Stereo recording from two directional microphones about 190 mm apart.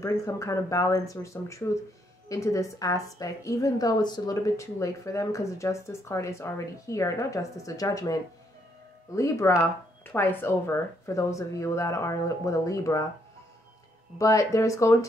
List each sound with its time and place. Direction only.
0.0 s a woman's voice: 15° left (ahead or behind)
14.1 s a woman's voice: 15° left (ahead or behind)